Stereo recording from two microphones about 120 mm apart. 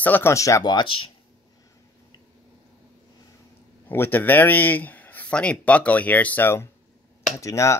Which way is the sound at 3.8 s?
15° left (ahead or behind).